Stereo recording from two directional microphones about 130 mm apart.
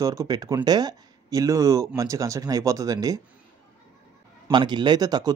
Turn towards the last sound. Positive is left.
turn(degrees=-30)  # may be behind; listen again after turning